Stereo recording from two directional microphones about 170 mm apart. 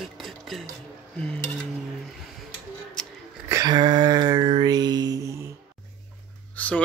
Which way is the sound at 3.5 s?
25° right (ahead or behind).